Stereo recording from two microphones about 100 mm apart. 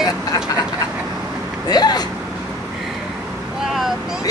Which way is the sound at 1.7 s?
45° left (ahead or behind).